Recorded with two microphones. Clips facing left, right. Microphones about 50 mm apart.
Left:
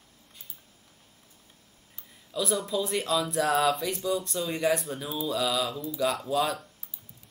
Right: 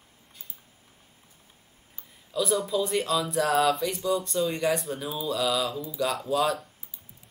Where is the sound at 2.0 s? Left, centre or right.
Centre.